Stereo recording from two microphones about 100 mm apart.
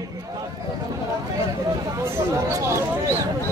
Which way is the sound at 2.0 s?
25° right (ahead or behind).